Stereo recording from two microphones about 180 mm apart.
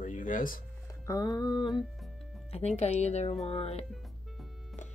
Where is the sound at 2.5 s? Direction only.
35° left (ahead or behind).